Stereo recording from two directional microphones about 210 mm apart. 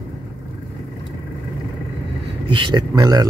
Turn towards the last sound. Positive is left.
turn(degrees=-20)  # may be behind; listen again after turning